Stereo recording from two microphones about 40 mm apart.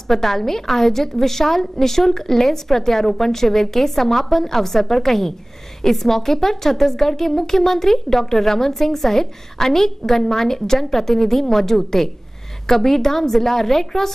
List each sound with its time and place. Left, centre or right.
0.1 s a woman's voice: centre